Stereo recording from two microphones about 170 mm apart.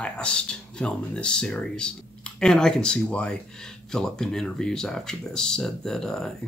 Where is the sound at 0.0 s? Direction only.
5° left (ahead or behind).